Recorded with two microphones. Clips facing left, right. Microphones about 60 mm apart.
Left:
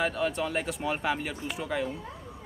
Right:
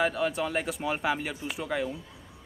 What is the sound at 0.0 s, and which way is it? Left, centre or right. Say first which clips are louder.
Speech: right 1 dB; centre.